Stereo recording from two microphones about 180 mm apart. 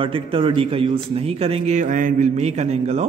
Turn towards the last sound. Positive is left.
turn(degrees=-40)  # may be behind; listen again after turning